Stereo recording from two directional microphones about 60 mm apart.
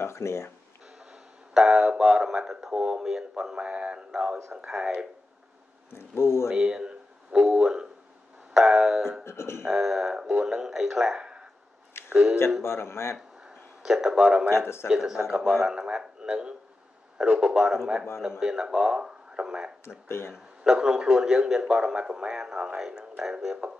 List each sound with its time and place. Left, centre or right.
0.0 s speech: left
1.5 s speech: centre
5.9 s speech: left
6.5 s speech: centre
9.2 s speech: left
9.7 s speech: centre
11.1 s a sound: centre
12.1 s speech: centre
12.6 s speech: left
13.8 s speech: centre
19.8 s speech: left
20.6 s speech: centre